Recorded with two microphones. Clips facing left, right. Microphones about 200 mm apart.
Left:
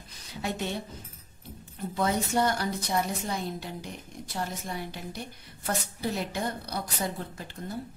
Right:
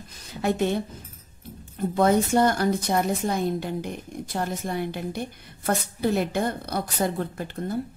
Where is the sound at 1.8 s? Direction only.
55° right (ahead or behind).